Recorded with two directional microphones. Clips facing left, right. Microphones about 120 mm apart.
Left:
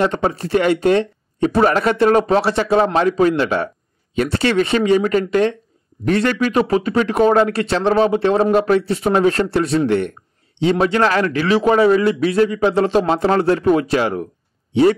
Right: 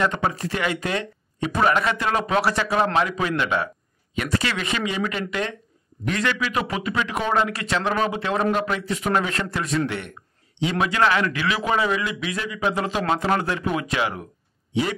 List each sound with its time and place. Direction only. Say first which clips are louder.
0.0 s a man's voice: left 5 dB; 35° left (ahead or behind)
4.7 s a man's voice: left 11 dB; 40° left (ahead or behind)